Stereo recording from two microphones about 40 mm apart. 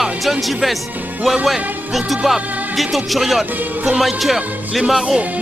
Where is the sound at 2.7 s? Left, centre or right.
Centre.